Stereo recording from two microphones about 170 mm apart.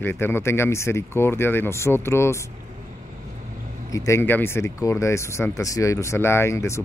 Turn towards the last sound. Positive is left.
turn(degrees=15)  # may be behind; listen again after turning